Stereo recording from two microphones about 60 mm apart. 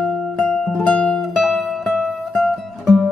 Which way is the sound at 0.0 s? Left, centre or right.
Centre.